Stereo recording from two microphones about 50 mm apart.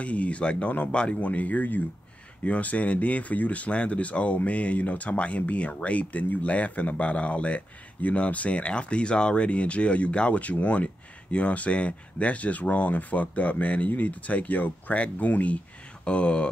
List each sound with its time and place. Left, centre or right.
0.0 s speech: left